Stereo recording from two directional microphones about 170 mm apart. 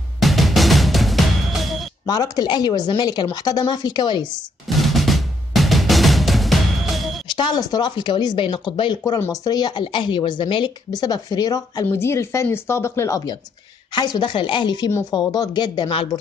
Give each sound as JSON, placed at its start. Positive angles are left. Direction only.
{"t": 0.2, "sound": "music", "side_deg": 0}
{"t": 2.0, "sound": "speech", "side_deg": 25}
{"t": 4.6, "sound": "music", "side_deg": 0}
{"t": 7.3, "sound": "speech", "side_deg": 25}